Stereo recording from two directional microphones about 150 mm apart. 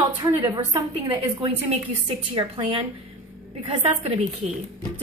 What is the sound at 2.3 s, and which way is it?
A woman's voice, 35° right (ahead or behind).